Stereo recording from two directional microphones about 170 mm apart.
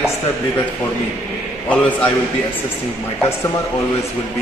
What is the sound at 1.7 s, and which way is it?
Speech, 5° left (ahead or behind).